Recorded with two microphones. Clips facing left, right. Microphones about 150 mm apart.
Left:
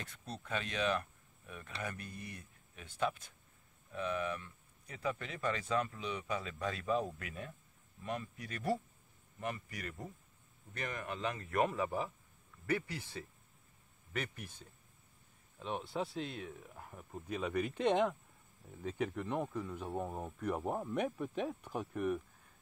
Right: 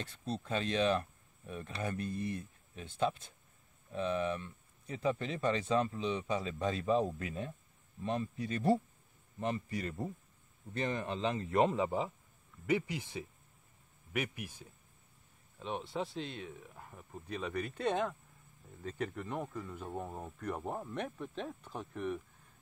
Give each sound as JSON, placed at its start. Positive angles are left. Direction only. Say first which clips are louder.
{"t": 0.0, "sound": "speech", "louder": "right 7 dB", "side_deg": -30}
{"t": 15.6, "sound": "speech", "louder": "right 1 dB", "side_deg": 0}